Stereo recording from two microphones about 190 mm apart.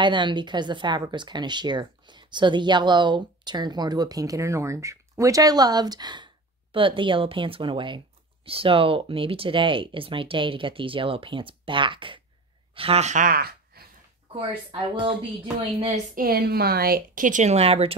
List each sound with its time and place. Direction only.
0.0 s speech: 25° right (ahead or behind); by 13.8 s 55° right (ahead or behind)
14.3 s speech: 25° right (ahead or behind)
16.2 s a woman's voice: 55° right (ahead or behind); by 17.9 s 30° right (ahead or behind)